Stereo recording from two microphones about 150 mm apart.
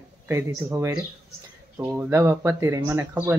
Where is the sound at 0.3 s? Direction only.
15° right (ahead or behind).